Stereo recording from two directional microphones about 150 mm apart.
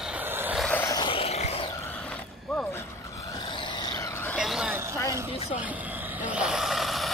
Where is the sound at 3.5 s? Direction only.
30° left (ahead or behind); by 4.4 s 15° left (ahead or behind).